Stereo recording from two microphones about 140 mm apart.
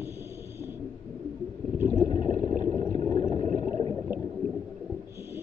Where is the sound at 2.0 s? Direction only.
65° right (ahead or behind).